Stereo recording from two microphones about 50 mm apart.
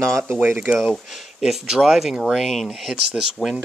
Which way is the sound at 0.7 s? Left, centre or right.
Centre.